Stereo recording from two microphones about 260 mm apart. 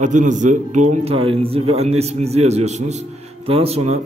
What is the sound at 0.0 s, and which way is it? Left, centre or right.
A man's voice, right.